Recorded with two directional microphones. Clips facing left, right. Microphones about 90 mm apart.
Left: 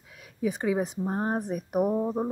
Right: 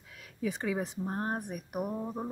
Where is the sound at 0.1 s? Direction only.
20° left (ahead or behind).